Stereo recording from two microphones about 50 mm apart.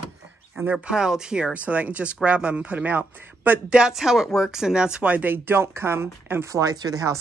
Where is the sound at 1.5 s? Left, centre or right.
Right.